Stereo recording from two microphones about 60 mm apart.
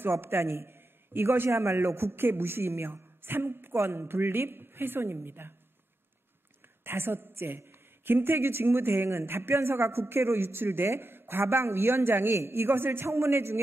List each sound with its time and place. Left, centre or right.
0.0 s speech: right
6.8 s speech: right